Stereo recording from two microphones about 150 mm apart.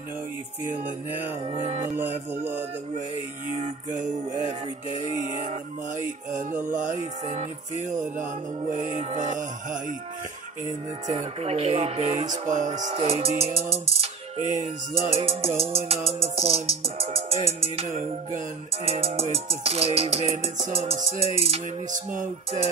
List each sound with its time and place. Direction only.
0.8 s music: 10° right (ahead or behind)
1.5 s speech: 45° right (ahead or behind)
2.0 s music: 10° right (ahead or behind)
3.5 s music: 55° right (ahead or behind)
6.7 s music: 60° right (ahead or behind)
11.1 s speech: 45° right (ahead or behind)
13.0 s music: 45° right (ahead or behind)
14.0 s music: 55° right (ahead or behind)
15.1 s music: 40° right (ahead or behind)
18.9 s music: 40° right (ahead or behind)
19.3 s speech: 40° right (ahead or behind)
21.2 s music: 40° right (ahead or behind)
21.9 s music: 60° right (ahead or behind)